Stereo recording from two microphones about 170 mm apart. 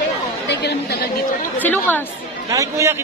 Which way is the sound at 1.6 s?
10° left (ahead or behind).